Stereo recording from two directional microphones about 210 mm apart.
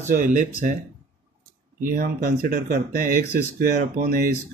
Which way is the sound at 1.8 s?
40° right (ahead or behind).